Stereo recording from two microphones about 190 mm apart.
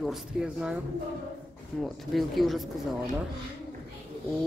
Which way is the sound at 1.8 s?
Centre (ahead or behind).